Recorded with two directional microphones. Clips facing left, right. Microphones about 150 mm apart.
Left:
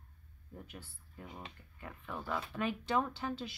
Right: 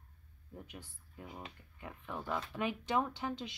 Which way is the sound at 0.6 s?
15° right (ahead or behind).